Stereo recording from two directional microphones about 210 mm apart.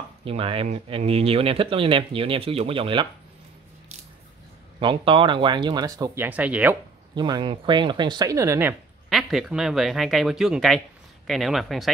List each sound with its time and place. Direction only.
0.2 s speech: 25° right (ahead or behind)
4.7 s speech: 25° right (ahead or behind); by 6.8 s 5° right (ahead or behind)
7.2 s speech: 20° right (ahead or behind); by 11.9 s centre (ahead or behind)